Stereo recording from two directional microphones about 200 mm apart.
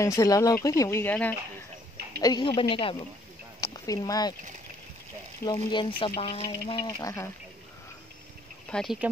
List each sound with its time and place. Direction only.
0.0 s speech: 15° left (ahead or behind)
2.1 s speech: 20° left (ahead or behind)
5.4 s speech: 20° left (ahead or behind)
7.0 s speech: 15° left (ahead or behind)
8.6 s speech: 5° left (ahead or behind)